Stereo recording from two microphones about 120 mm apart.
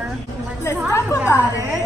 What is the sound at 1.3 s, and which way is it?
Speech, 20° left (ahead or behind).